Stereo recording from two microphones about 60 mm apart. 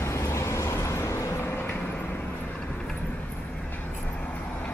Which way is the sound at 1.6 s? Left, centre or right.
Left.